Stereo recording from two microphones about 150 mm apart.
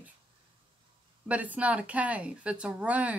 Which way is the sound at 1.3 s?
10° right (ahead or behind).